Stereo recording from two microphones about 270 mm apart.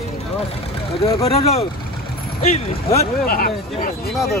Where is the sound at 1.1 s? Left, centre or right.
Left.